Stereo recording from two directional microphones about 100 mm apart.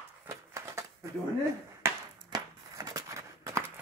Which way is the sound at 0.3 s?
30° right (ahead or behind).